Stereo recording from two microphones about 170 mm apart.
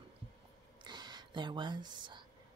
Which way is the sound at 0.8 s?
25° right (ahead or behind).